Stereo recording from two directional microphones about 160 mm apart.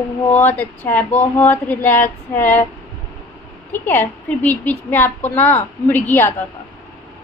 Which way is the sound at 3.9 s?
10° left (ahead or behind).